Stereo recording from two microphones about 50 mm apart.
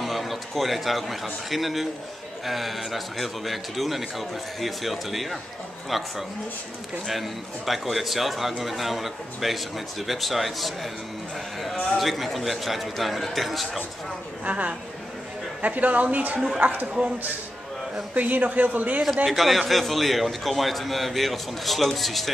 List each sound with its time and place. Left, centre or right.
0.0 s a man's voice: centre
12.0 s a man's voice: centre
14.4 s a woman's voice: right
18.1 s speech: right
19.2 s a man's voice: centre